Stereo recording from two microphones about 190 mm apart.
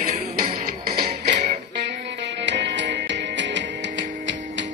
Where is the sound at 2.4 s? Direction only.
65° right (ahead or behind).